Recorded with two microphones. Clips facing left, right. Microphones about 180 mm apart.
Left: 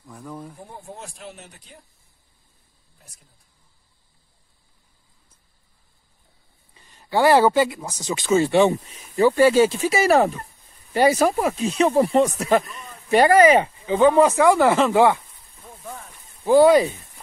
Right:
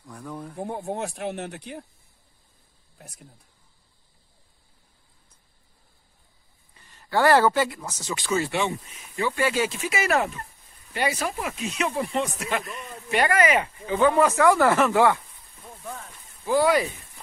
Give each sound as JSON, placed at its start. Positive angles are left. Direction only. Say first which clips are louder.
{"t": 0.0, "sound": "speech", "louder": "even", "side_deg": 0}
{"t": 0.6, "sound": "speech", "louder": "right 9 dB", "side_deg": -65}
{"t": 6.7, "sound": "speech", "louder": "left 2 dB", "side_deg": 15}
{"t": 13.8, "sound": "speech", "louder": "left 4 dB", "side_deg": 25}
{"t": 15.8, "sound": "a sound", "louder": "even", "side_deg": 10}
{"t": 16.4, "sound": "speech", "louder": "left 7 dB", "side_deg": 25}